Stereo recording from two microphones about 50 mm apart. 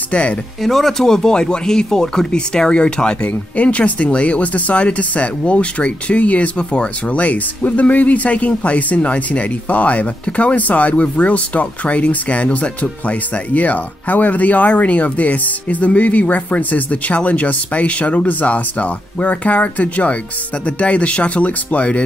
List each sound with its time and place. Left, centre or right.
0.1 s speech: left
0.6 s speech: centre
3.2 s speech: left